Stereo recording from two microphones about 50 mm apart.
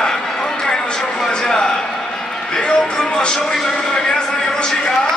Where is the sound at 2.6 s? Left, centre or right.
Centre.